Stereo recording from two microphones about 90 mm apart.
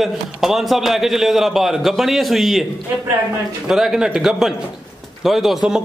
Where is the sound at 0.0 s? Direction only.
5° right (ahead or behind).